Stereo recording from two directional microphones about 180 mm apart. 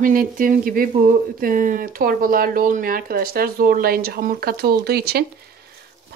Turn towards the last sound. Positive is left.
turn(degrees=-60)  # may be behind; listen again after turning